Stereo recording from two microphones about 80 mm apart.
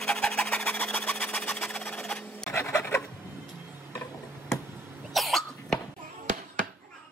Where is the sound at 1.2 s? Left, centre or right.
Left.